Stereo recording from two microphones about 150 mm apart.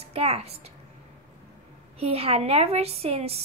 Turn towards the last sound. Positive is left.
turn(degrees=-40)  # may be behind; listen again after turning